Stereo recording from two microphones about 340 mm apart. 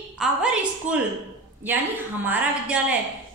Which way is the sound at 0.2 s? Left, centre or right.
Centre.